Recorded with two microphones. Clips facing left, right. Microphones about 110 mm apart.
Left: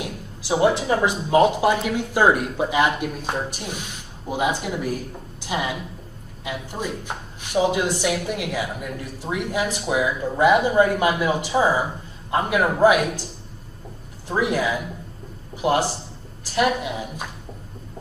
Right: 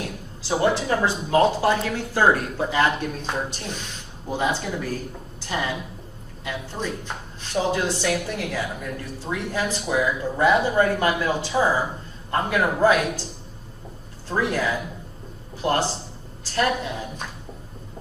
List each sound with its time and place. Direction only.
0.0 s speech: 15° left (ahead or behind)
14.2 s a man's voice: 15° left (ahead or behind)